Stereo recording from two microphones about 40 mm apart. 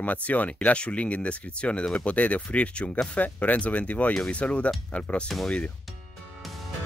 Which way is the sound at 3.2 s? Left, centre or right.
Left.